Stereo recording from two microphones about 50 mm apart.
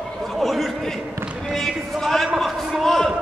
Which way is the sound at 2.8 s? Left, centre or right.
Centre.